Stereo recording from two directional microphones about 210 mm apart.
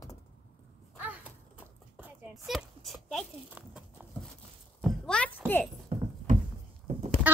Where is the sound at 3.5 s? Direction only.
5° right (ahead or behind).